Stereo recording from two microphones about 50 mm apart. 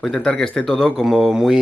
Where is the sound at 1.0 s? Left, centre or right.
Centre.